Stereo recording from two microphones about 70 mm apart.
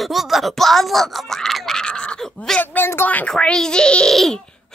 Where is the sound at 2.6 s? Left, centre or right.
Left.